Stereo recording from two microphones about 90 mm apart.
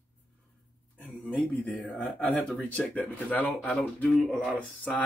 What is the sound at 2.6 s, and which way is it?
Speech, 15° left (ahead or behind).